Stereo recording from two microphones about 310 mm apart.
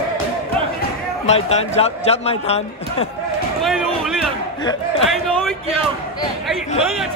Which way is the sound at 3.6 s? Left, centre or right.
Centre.